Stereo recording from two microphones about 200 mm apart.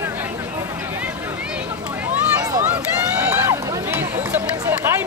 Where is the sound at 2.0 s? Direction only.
10° right (ahead or behind).